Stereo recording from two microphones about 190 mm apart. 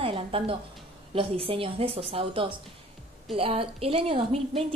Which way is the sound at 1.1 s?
30° right (ahead or behind).